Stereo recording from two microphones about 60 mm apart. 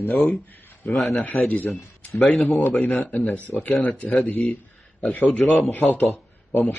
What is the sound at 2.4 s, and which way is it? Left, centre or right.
Speech, left.